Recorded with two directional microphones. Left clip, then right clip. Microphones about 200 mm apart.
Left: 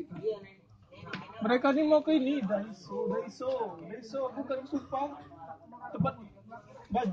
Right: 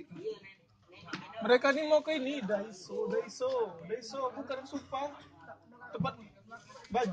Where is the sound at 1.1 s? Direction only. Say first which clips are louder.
Right 2 dB; 45° right (ahead or behind).